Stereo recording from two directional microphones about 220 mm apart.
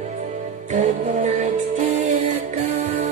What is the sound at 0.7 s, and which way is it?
Music, 35° right (ahead or behind).